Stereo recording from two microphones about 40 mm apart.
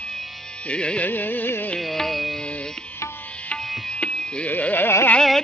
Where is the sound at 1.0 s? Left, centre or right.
Left.